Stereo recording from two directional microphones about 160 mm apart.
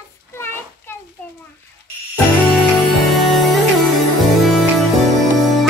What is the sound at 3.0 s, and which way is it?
Music, centre (ahead or behind).